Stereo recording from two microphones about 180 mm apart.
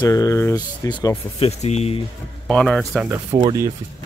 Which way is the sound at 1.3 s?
35° left (ahead or behind).